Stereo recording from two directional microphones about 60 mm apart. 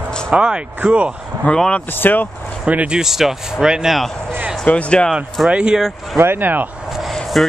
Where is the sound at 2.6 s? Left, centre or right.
Right.